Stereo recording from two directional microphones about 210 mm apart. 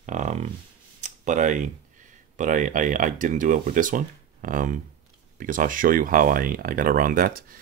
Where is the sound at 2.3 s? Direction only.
40° right (ahead or behind).